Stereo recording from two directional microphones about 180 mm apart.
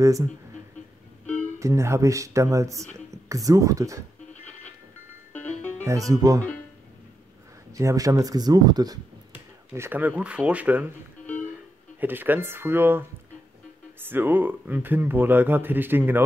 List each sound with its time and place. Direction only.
0.0 s speech: 20° right (ahead or behind)
1.6 s speech: 15° right (ahead or behind)
5.3 s music: 10° left (ahead or behind)
5.9 s speech: 20° right (ahead or behind)
7.7 s speech: 20° right (ahead or behind)
12.0 s speech: 10° right (ahead or behind)
14.0 s speech: 10° right (ahead or behind)